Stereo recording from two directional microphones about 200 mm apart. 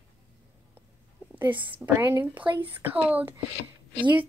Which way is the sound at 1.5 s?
25° right (ahead or behind).